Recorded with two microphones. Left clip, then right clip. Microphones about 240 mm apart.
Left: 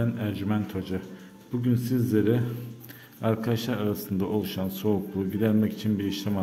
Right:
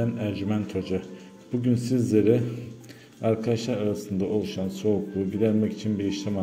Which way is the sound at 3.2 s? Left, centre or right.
Centre.